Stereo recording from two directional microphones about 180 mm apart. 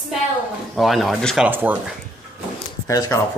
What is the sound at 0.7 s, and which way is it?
Speech, centre (ahead or behind).